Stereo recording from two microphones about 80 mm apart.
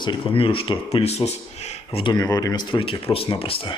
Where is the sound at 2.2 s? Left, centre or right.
Left.